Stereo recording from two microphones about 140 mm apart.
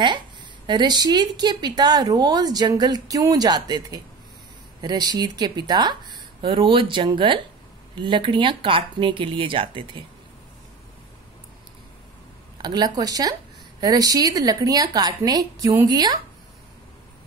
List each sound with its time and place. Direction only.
0.7 s a woman's voice: 30° right (ahead or behind)
12.6 s a woman's voice: 30° right (ahead or behind)